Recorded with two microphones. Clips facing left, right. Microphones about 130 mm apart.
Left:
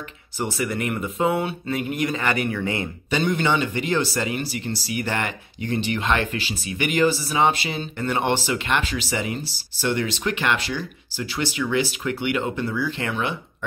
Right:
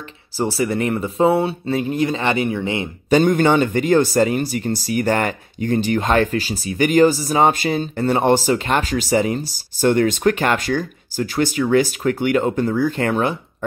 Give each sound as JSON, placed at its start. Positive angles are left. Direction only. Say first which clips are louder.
{"t": 0.4, "sound": "speech", "louder": "right 6 dB", "side_deg": -35}
{"t": 3.1, "sound": "speech", "louder": "right 8 dB", "side_deg": -45}